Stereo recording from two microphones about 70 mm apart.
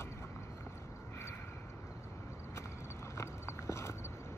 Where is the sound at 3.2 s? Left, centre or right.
Left.